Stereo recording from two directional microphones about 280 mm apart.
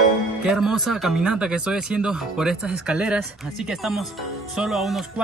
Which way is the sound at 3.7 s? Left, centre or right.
Centre.